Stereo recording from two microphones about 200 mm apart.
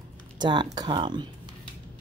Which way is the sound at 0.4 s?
20° right (ahead or behind).